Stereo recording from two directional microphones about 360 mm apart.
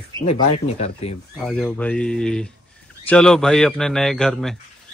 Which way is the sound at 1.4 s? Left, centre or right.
Centre.